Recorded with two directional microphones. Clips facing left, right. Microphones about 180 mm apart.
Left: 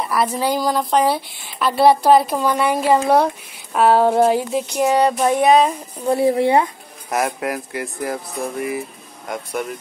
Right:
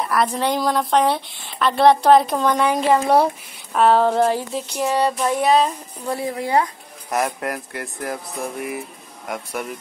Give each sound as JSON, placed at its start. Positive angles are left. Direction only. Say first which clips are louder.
{"t": 0.0, "sound": "speech", "louder": "left 1 dB", "side_deg": 5}
{"t": 3.7, "sound": "child singing", "louder": "left 2 dB", "side_deg": 5}
{"t": 6.1, "sound": "speech", "louder": "left 6 dB", "side_deg": 30}
{"t": 7.1, "sound": "speech", "louder": "left 2 dB", "side_deg": 5}